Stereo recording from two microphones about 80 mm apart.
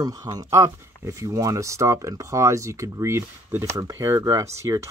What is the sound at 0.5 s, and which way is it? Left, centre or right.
Speech, right.